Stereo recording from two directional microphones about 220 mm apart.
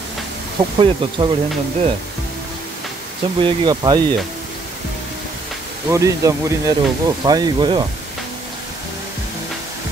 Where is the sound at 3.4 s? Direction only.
20° right (ahead or behind).